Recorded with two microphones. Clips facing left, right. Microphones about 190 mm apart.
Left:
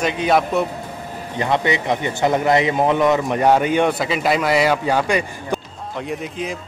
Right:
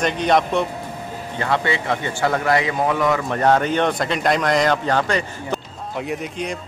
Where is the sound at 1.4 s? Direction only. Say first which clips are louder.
Left 2 dB; 20° left (ahead or behind).